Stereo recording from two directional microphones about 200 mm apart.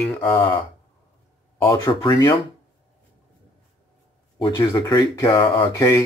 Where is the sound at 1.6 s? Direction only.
15° left (ahead or behind).